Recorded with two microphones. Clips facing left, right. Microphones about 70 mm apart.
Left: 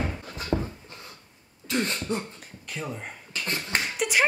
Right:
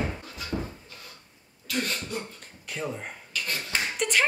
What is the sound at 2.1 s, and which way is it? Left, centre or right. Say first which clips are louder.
Beatboxing: left 5 dB; left.